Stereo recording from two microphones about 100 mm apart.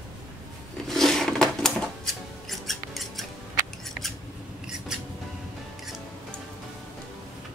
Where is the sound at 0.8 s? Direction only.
5° left (ahead or behind).